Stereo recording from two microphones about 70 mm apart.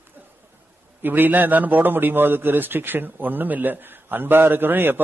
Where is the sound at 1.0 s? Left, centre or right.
Right.